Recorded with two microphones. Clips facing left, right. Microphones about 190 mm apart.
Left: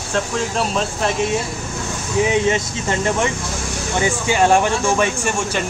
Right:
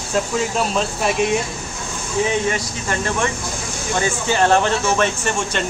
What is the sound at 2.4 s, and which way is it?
Speech, 25° left (ahead or behind).